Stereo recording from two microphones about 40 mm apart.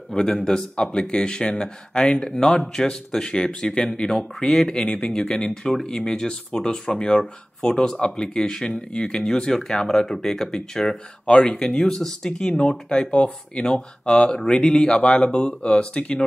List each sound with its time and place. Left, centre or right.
0.1 s speech: centre